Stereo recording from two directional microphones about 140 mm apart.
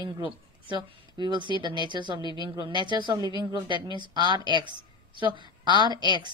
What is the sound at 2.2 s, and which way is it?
Speech, 35° left (ahead or behind).